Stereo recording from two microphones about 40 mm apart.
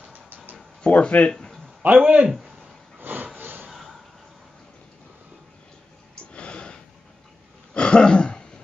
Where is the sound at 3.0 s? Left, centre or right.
Right.